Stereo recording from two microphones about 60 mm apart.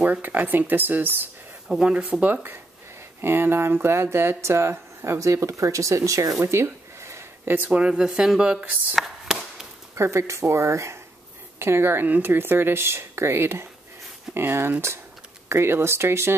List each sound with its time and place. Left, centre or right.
0.0 s speech: right
1.7 s speech: centre
3.2 s speech: right
6.4 s a sound: right
7.5 s speech: right
7.8 s a sound: centre
9.9 s speech: right
11.6 s speech: right